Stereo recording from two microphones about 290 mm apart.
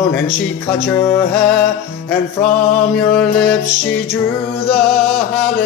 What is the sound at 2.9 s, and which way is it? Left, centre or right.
Mantra, centre.